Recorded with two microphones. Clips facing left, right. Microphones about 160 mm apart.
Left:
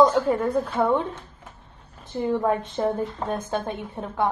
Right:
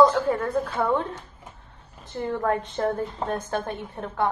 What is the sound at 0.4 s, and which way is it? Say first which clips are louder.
Speech: left 2 dB; 15° left (ahead or behind).